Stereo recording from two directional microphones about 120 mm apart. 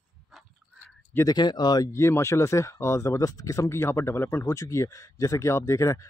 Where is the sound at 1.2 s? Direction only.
35° left (ahead or behind).